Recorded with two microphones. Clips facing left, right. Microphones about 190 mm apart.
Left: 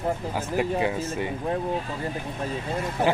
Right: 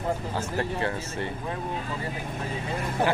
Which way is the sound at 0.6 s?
15° left (ahead or behind).